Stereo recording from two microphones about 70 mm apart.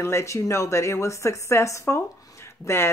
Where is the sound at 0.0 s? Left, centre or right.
Left.